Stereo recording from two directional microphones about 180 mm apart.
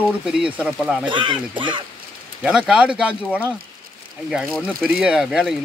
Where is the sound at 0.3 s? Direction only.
5° right (ahead or behind).